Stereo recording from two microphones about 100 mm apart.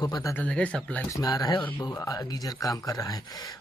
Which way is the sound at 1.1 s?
40° left (ahead or behind).